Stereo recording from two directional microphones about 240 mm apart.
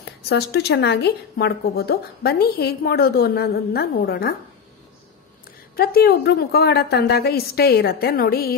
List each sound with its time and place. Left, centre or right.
0.0 s a woman's voice: left
5.8 s a woman's voice: left